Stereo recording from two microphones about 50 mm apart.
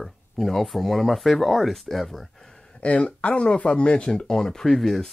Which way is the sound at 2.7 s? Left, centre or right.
Left.